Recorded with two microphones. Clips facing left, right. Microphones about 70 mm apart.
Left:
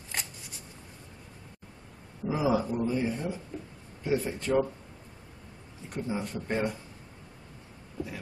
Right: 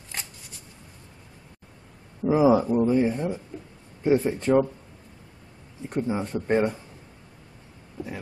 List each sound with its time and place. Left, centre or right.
2.2 s speech: right
5.9 s speech: right